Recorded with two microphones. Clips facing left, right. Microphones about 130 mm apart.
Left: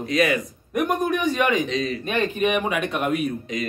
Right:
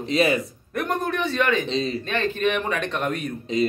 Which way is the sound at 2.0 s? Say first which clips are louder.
Left 4 dB; 15° left (ahead or behind).